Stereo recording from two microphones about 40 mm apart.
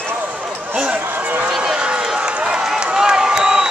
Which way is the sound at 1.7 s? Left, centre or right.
Right.